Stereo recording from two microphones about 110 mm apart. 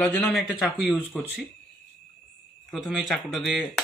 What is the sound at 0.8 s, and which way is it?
Speech, 15° right (ahead or behind).